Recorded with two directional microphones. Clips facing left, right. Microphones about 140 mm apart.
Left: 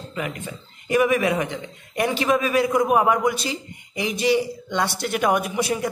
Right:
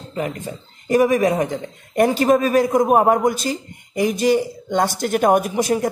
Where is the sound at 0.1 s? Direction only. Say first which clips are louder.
Right 5 dB; 35° right (ahead or behind).